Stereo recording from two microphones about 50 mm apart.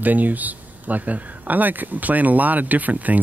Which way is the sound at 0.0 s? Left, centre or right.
Right.